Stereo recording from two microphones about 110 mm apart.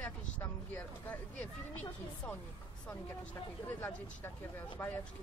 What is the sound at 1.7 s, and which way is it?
Speech, 15° left (ahead or behind).